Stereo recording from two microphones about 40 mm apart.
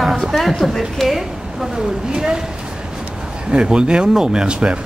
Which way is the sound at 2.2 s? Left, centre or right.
Centre.